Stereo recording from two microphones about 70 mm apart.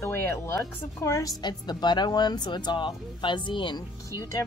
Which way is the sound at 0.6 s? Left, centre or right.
Left.